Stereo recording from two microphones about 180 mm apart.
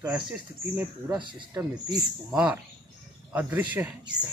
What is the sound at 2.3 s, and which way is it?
Speech, 5° right (ahead or behind).